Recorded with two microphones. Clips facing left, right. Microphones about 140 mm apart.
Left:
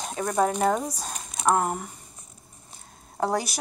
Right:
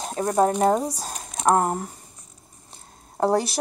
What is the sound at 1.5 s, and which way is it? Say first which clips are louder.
Speech: right 3 dB; 35° right (ahead or behind).